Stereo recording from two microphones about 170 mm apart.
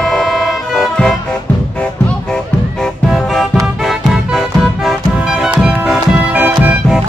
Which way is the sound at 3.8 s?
Centre (ahead or behind).